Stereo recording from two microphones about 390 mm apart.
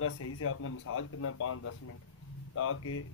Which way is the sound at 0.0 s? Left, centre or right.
Left.